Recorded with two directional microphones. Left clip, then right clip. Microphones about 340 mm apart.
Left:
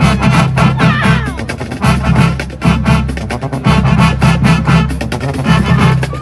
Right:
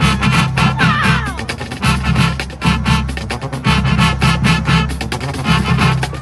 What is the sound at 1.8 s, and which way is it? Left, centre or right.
Music, centre.